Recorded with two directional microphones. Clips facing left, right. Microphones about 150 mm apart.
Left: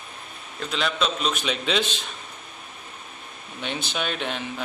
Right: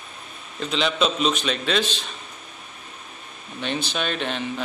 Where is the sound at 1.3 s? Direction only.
10° left (ahead or behind).